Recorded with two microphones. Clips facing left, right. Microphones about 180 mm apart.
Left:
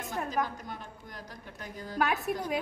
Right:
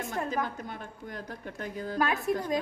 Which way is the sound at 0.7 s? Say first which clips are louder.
Right 5 dB; 55° right (ahead or behind).